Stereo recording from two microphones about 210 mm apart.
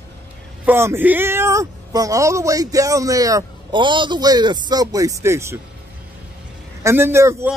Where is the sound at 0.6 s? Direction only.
10° right (ahead or behind).